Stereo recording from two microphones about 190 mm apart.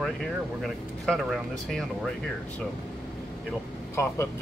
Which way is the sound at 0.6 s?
Centre (ahead or behind).